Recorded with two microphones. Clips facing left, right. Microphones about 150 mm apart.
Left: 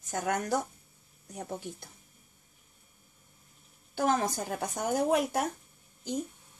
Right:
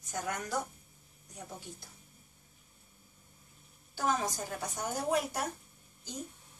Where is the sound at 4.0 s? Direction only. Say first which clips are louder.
Left 4 dB; 55° left (ahead or behind).